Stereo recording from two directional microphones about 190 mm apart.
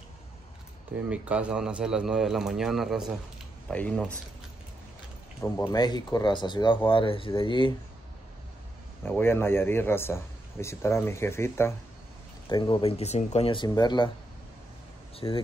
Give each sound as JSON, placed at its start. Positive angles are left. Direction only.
{"t": 0.9, "sound": "a man's voice", "side_deg": -5}
{"t": 5.6, "sound": "speech", "side_deg": 20}
{"t": 9.0, "sound": "a man's voice", "side_deg": 10}
{"t": 12.4, "sound": "speech", "side_deg": 25}
{"t": 15.1, "sound": "speech", "side_deg": 30}